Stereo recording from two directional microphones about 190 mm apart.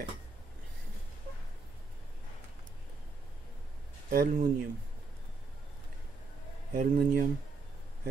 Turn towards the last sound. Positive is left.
turn(degrees=-45)  # may be behind; listen again after turning